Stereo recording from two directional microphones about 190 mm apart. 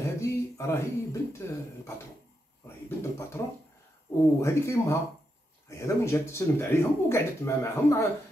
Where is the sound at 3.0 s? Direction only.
15° left (ahead or behind).